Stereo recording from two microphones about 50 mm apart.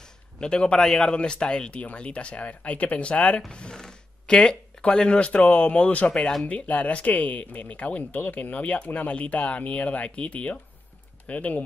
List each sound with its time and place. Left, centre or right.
0.0 s speech: centre
6.1 s speech: centre
6.4 s speech: left